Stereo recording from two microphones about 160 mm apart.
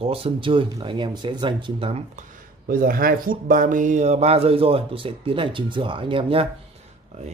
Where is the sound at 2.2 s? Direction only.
60° right (ahead or behind); by 6.4 s 35° right (ahead or behind).